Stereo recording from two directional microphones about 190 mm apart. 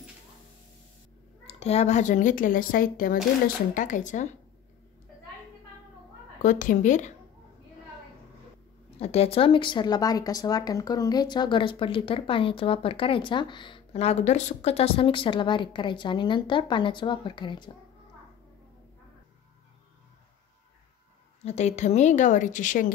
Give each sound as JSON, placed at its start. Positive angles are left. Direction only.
{"t": 1.5, "sound": "speech", "side_deg": 35}
{"t": 6.4, "sound": "a woman's voice", "side_deg": 45}
{"t": 8.9, "sound": "speech", "side_deg": 35}
{"t": 21.5, "sound": "speech", "side_deg": 35}